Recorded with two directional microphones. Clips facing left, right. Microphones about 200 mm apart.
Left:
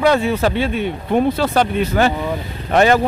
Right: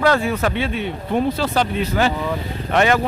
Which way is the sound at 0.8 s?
55° left (ahead or behind).